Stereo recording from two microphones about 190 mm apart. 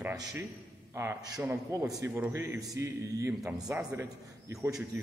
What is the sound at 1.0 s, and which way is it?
A man's voice, 15° right (ahead or behind).